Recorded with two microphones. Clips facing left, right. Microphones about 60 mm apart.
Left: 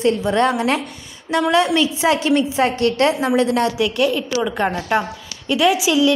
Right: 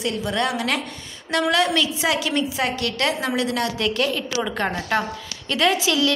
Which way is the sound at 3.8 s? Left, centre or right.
Centre.